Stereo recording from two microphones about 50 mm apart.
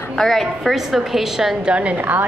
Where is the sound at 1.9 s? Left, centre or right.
Right.